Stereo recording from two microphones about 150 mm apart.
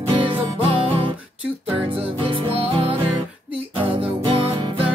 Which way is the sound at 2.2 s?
40° right (ahead or behind).